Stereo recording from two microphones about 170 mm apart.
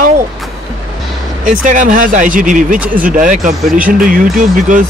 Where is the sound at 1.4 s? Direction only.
50° right (ahead or behind).